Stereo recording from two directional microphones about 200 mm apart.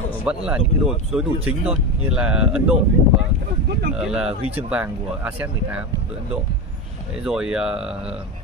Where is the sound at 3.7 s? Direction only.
55° right (ahead or behind).